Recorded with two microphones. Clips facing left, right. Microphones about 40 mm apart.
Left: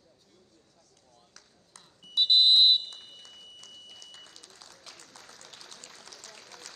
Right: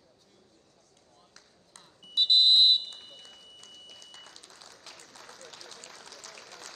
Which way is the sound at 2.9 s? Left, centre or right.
Right.